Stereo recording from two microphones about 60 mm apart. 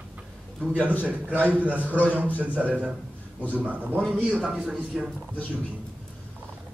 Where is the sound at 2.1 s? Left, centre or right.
Right.